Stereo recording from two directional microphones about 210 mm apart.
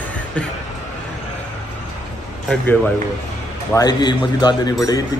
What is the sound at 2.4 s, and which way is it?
Speech, 5° left (ahead or behind).